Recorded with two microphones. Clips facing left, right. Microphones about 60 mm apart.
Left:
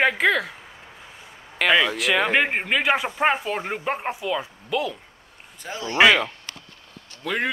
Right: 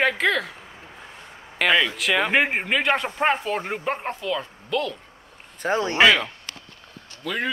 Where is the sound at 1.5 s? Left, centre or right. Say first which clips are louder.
Left 1 dB; centre.